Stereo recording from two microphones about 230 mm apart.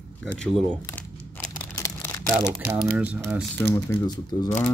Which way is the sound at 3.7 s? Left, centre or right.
Centre.